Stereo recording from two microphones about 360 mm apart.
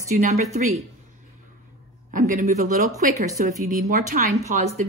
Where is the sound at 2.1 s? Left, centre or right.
Right.